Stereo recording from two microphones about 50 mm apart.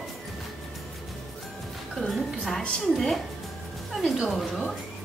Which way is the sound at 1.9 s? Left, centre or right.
Centre.